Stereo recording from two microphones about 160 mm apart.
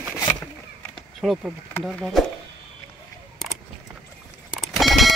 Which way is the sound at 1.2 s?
Centre (ahead or behind).